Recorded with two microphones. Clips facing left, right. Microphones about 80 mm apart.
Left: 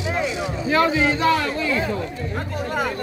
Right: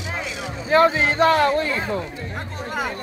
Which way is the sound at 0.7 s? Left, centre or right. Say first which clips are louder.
Right 2 dB; right.